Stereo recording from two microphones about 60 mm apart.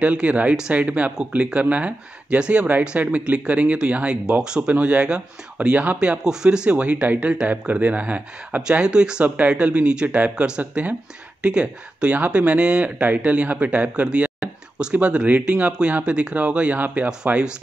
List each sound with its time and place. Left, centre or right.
0.0 s speech: right
5.9 s speech: centre
10.6 s speech: right
14.4 s a sound: centre
15.0 s speech: right